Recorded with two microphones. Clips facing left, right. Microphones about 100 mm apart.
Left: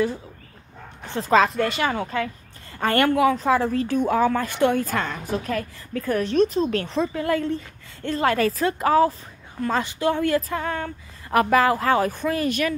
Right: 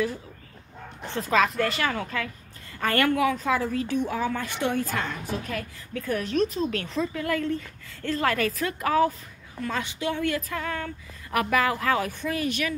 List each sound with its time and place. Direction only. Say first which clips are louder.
1.3 s a woman's voice: left 4 dB; 25° left (ahead or behind); by 5.6 s 55° left (ahead or behind)
5.6 s speech: left 5 dB; 40° left (ahead or behind)
6.3 s a woman's voice: left 5 dB; 30° left (ahead or behind); by 12.7 s 45° left (ahead or behind)